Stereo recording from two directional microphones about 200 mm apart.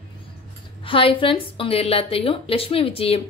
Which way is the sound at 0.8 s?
25° left (ahead or behind).